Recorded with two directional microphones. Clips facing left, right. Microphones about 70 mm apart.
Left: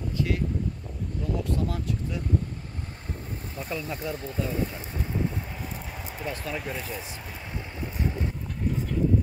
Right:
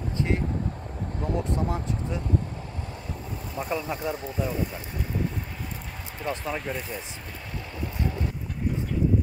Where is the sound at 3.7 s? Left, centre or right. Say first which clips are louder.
Right 3 dB; right.